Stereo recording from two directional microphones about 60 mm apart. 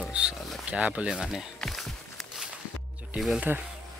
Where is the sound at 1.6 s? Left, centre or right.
Centre.